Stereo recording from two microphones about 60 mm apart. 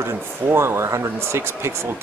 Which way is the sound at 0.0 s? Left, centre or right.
Right.